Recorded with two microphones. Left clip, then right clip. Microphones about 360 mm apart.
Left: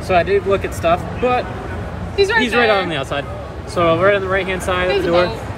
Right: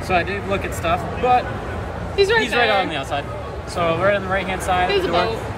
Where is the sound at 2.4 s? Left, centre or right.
Centre.